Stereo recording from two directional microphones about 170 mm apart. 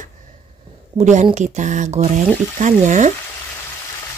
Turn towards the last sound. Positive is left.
turn(degrees=-45)  # may be behind; listen again after turning